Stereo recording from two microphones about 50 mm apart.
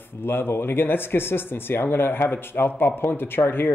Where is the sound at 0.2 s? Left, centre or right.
Left.